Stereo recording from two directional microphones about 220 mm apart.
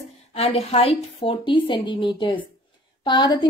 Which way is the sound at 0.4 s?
30° left (ahead or behind).